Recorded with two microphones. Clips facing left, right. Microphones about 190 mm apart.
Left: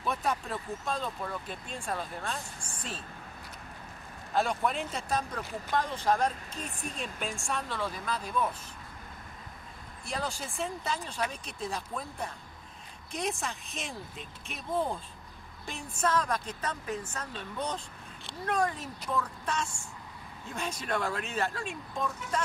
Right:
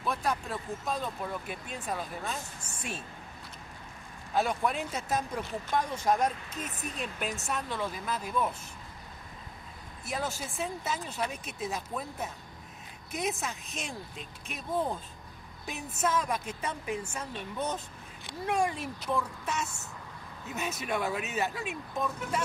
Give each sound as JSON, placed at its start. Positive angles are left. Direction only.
{"t": 0.0, "sound": "speech", "side_deg": 0}
{"t": 4.3, "sound": "speech", "side_deg": -5}
{"t": 10.0, "sound": "speech", "side_deg": -5}